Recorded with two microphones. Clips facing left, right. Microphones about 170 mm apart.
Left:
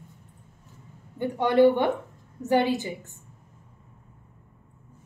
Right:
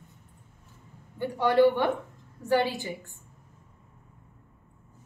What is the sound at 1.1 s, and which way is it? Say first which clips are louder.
A woman's voice: left 2 dB; 20° left (ahead or behind).